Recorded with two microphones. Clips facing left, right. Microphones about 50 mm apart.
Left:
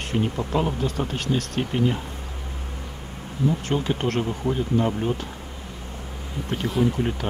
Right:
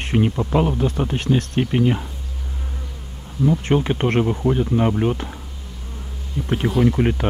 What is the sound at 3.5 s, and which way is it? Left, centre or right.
Speech, right.